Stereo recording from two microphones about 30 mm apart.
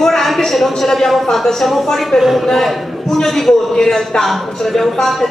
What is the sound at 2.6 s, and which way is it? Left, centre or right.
A man's voice, centre.